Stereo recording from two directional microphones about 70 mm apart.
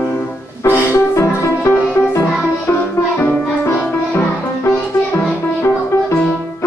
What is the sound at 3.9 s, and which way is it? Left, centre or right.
Music, left.